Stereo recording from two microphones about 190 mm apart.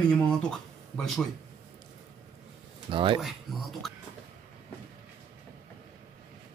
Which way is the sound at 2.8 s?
25° right (ahead or behind).